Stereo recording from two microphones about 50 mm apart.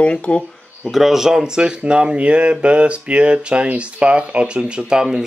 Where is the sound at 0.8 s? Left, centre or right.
Centre.